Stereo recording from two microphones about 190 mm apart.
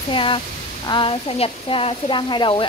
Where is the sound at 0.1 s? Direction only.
25° left (ahead or behind).